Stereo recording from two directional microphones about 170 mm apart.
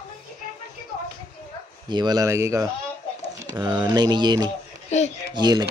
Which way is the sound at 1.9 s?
25° right (ahead or behind).